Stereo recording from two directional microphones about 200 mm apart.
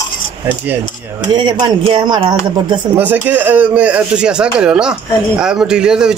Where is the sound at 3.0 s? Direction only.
10° right (ahead or behind).